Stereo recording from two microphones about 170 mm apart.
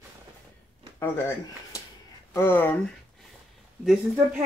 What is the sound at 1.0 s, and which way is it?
Speech, 15° left (ahead or behind).